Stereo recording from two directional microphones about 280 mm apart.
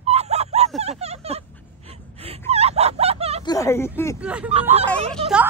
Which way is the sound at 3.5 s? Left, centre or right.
Centre.